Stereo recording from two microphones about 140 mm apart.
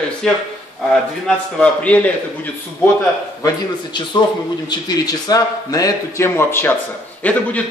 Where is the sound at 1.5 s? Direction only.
10° left (ahead or behind).